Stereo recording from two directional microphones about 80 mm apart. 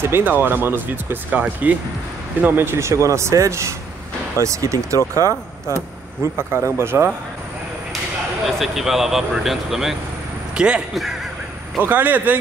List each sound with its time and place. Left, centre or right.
0.0 s speech: right
8.5 s speech: centre
11.8 s speech: right